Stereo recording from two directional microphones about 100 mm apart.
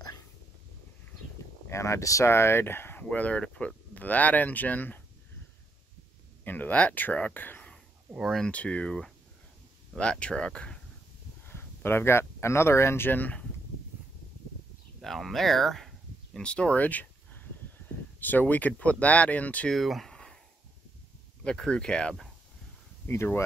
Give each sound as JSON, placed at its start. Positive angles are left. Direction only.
{"t": 1.7, "sound": "speech", "side_deg": 30}
{"t": 6.4, "sound": "speech", "side_deg": 15}
{"t": 8.1, "sound": "speech", "side_deg": -5}
{"t": 8.4, "sound": "speech", "side_deg": 10}
{"t": 11.4, "sound": "speech", "side_deg": 25}
{"t": 15.0, "sound": "speech", "side_deg": 0}
{"t": 19.7, "sound": "a sound", "side_deg": 0}
{"t": 21.5, "sound": "speech", "side_deg": 10}
{"t": 23.0, "sound": "speech", "side_deg": 25}